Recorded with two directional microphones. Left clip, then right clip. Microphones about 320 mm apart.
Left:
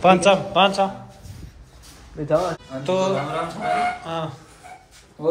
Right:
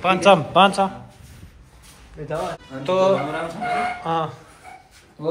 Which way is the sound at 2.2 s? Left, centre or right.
Left.